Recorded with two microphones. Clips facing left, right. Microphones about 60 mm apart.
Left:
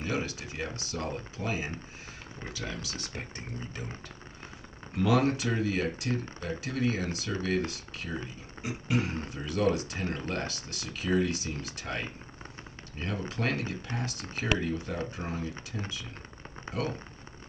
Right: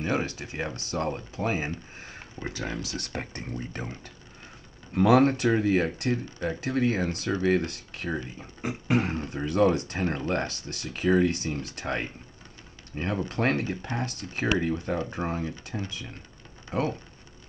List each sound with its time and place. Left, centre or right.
0.0 s speech: right
5.0 s speech: right
15.7 s speech: right
16.7 s a sound: left